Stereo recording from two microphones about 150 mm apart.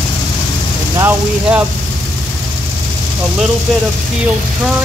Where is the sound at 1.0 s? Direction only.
15° right (ahead or behind).